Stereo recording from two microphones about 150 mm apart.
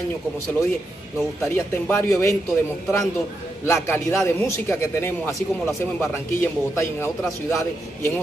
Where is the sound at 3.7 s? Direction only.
15° left (ahead or behind).